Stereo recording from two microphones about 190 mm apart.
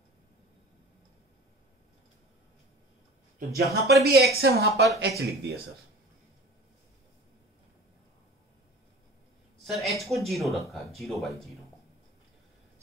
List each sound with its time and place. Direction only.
3.3 s speech: 55° right (ahead or behind)
9.7 s speech: centre (ahead or behind)